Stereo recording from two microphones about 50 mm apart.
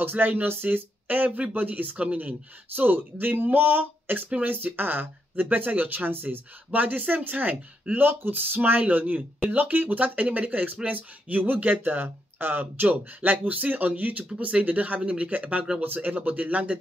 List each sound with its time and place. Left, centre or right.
0.0 s speech: right